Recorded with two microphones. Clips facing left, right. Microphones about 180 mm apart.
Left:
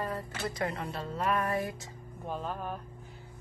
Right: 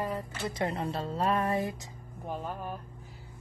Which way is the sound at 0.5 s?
25° right (ahead or behind).